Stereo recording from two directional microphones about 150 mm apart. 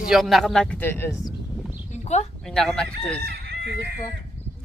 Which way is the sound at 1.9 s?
50° left (ahead or behind).